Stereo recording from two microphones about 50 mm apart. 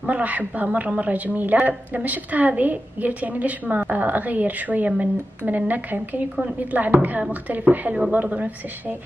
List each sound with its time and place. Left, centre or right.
0.0 s a woman's voice: right